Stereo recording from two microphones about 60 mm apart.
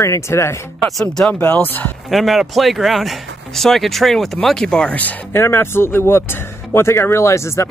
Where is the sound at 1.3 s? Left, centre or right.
Left.